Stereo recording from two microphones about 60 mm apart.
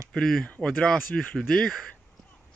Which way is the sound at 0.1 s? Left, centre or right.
Centre.